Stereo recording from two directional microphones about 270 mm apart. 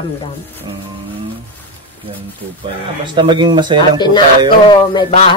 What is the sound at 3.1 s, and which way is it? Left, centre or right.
Speech, centre.